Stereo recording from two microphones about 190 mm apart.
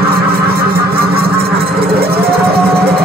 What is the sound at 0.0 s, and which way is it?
Vehicle, 55° right (ahead or behind).